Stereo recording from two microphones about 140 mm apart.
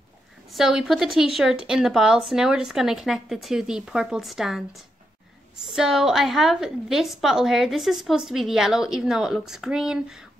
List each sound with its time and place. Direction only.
0.5 s a woman's voice: centre (ahead or behind)
5.7 s a woman's voice: 5° right (ahead or behind)